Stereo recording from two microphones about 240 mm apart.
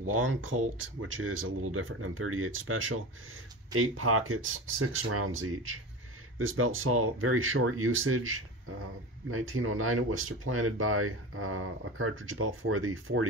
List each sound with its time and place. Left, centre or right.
0.0 s speech: right